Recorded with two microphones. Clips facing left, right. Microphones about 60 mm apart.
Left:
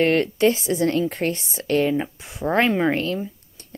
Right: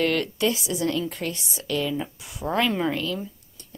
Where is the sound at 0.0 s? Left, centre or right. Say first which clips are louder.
Left 5 dB; left.